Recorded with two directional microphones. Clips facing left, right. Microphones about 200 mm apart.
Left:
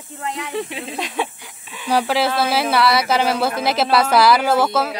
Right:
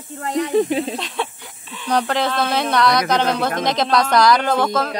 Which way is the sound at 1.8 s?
5° left (ahead or behind).